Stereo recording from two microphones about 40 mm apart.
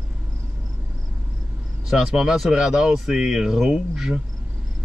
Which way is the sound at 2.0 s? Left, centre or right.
Centre.